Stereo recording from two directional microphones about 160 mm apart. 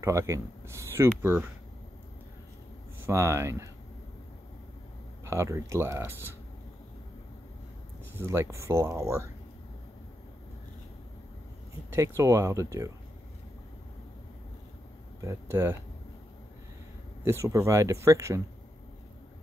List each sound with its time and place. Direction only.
0.0 s speech: 20° right (ahead or behind)
3.1 s speech: 15° right (ahead or behind)
5.2 s speech: 20° right (ahead or behind)
8.2 s speech: 15° right (ahead or behind)
11.9 s speech: 20° right (ahead or behind)
15.1 s speech: 15° right (ahead or behind)
17.2 s speech: 15° right (ahead or behind)